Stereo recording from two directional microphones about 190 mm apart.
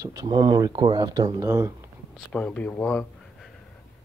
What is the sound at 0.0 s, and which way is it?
Speech, 20° right (ahead or behind).